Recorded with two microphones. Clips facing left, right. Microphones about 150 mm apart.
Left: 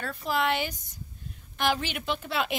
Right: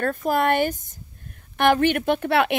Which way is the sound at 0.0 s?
50° right (ahead or behind).